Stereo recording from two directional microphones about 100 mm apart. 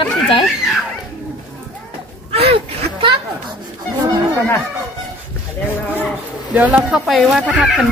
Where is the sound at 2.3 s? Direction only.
80° right.